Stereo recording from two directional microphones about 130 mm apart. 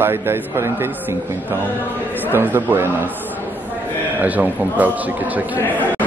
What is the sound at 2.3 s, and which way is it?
Speech, 20° right (ahead or behind).